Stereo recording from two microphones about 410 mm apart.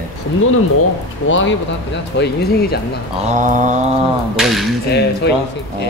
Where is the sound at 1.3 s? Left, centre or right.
Left.